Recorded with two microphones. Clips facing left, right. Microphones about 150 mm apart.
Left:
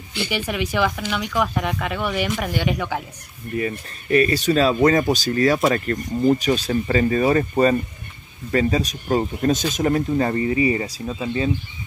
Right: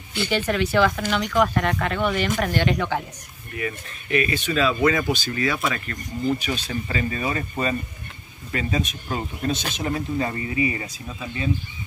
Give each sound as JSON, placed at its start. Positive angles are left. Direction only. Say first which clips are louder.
{"t": 0.3, "sound": "speech", "louder": "right 3 dB", "side_deg": 10}
{"t": 3.5, "sound": "speech", "louder": "left 5 dB", "side_deg": 35}
{"t": 10.5, "sound": "speech", "louder": "left 5 dB", "side_deg": 30}